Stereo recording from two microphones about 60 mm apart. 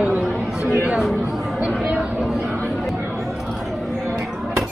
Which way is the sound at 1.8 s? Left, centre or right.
Centre.